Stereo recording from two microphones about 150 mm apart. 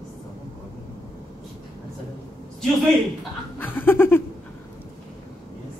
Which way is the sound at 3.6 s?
15° left (ahead or behind).